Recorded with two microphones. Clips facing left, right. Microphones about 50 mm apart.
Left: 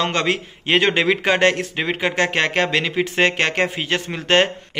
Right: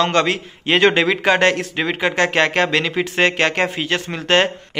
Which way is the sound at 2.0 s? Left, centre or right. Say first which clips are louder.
Right 3 dB; centre.